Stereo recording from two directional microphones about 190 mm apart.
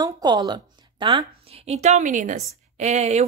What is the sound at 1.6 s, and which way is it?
A woman's voice, 35° right (ahead or behind).